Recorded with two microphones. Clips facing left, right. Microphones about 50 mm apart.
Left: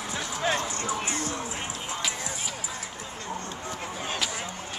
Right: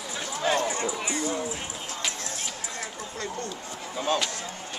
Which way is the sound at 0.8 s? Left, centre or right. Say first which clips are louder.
Right 1 dB; left.